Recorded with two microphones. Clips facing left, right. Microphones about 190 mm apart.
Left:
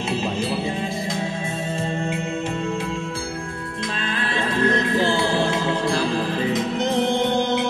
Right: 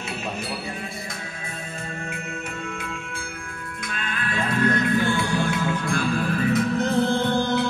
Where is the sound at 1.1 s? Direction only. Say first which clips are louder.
Left 10 dB; 30° left (ahead or behind).